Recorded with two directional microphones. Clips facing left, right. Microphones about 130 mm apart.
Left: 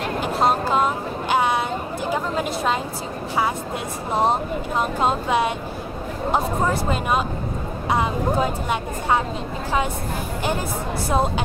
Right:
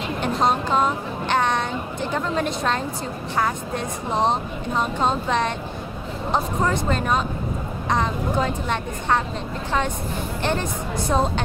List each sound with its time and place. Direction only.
0.7 s chatter: 5° left (ahead or behind)
3.3 s speech: 10° left (ahead or behind)
11.1 s speech: 10° left (ahead or behind)